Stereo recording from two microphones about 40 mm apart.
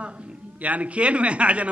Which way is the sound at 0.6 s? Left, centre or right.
Right.